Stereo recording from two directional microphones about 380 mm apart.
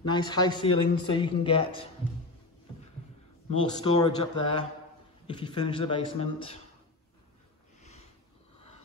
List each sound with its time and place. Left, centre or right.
0.1 s a man's voice: centre
3.6 s a man's voice: centre
7.8 s a sound: centre